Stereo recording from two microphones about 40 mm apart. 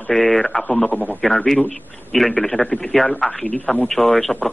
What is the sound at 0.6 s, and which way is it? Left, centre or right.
Speech, left.